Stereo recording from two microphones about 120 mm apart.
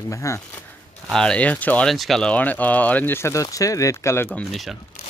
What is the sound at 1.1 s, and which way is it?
Speech, 5° left (ahead or behind).